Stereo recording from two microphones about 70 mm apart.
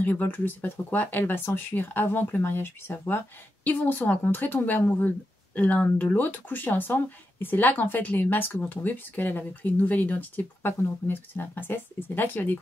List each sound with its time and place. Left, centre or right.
0.0 s speech: left